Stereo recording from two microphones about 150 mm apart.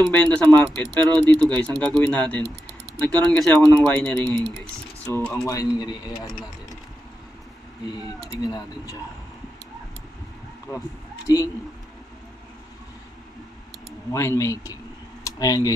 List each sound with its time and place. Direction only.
0.0 s speech: 10° left (ahead or behind); by 6.3 s 25° left (ahead or behind)
8.4 s speech: 25° left (ahead or behind)
11.2 s speech: 20° left (ahead or behind)
14.1 s speech: 20° left (ahead or behind)